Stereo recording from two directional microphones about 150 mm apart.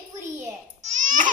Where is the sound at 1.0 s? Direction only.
60° right (ahead or behind).